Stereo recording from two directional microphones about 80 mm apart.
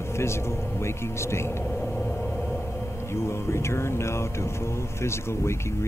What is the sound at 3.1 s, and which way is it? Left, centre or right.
Music, left.